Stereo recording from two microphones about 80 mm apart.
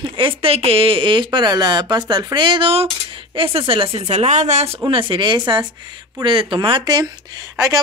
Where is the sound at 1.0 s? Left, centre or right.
Right.